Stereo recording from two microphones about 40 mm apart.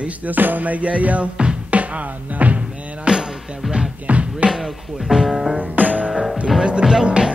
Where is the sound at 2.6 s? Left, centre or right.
Right.